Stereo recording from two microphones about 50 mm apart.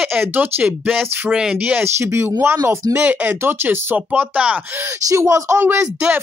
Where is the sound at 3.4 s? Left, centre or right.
Right.